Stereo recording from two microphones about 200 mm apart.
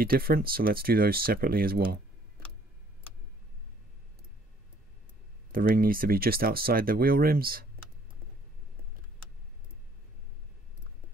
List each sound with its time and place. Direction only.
0.0 s speech: 50° right (ahead or behind)
5.5 s speech: 45° right (ahead or behind)